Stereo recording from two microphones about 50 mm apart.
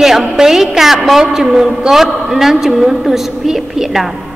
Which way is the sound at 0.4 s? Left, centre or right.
Centre.